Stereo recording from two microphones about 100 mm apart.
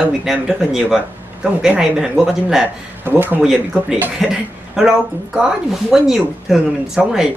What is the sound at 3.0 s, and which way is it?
Speech, 20° right (ahead or behind).